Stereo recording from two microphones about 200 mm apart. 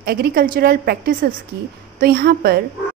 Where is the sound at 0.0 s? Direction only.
50° right (ahead or behind).